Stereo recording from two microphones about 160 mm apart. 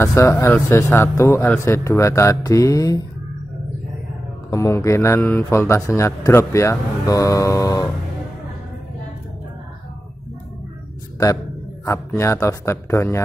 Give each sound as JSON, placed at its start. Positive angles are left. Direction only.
{"t": 0.0, "sound": "a man's voice", "side_deg": 15}
{"t": 4.5, "sound": "a man's voice", "side_deg": 20}
{"t": 11.8, "sound": "a man's voice", "side_deg": 15}